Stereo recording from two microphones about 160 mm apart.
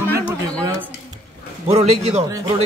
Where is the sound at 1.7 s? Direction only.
40° right (ahead or behind).